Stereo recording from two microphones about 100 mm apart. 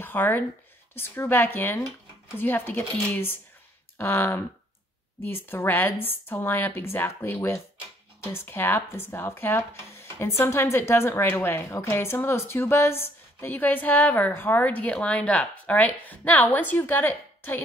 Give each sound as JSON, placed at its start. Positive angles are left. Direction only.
{"t": 0.0, "sound": "speech", "side_deg": 20}
{"t": 7.3, "sound": "speech", "side_deg": 30}